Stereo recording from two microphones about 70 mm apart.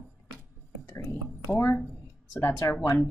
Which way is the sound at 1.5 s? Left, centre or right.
Left.